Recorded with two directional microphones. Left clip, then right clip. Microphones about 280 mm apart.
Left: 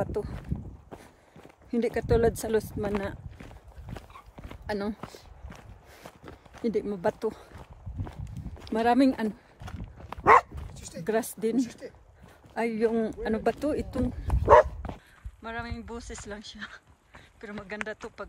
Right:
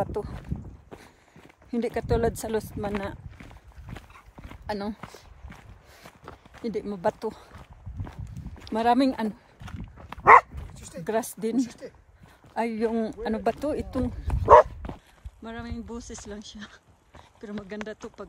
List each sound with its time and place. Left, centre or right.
0.0 s walk: centre
4.5 s speech: centre
5.5 s walk: centre
6.6 s speech: centre
8.6 s walk: centre
10.2 s dog: right
11.1 s speech: centre
11.5 s speech: centre
12.5 s speech: centre
15.4 s speech: centre